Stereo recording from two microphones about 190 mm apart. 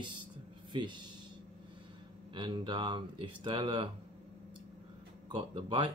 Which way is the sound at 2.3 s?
25° right (ahead or behind).